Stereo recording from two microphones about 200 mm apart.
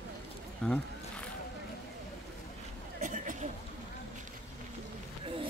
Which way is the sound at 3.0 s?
40° right (ahead or behind).